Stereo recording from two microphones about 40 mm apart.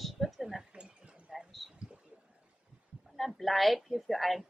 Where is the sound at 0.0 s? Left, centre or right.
Centre.